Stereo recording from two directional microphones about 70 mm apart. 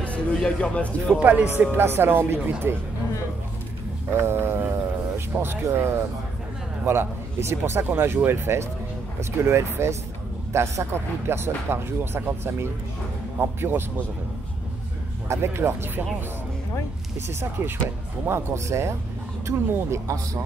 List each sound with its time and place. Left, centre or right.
0.0 s music: centre
0.6 s speech: centre
1.2 s speech: right
1.6 s a man's voice: right
4.1 s a man's voice: right
15.2 s a man's voice: right
17.3 s a man's voice: right